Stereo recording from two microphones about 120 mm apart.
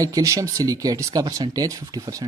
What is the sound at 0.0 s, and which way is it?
Speech, 30° right (ahead or behind).